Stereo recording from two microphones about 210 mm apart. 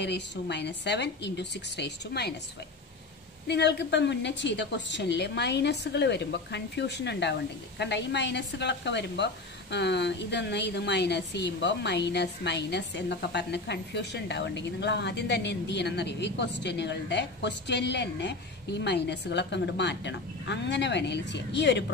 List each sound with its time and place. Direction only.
0.0 s a woman's voice: 55° left (ahead or behind)
3.4 s a woman's voice: 55° left (ahead or behind)